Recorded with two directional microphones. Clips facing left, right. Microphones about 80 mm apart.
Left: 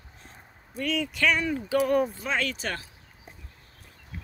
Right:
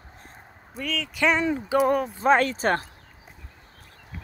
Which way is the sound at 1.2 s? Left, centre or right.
Right.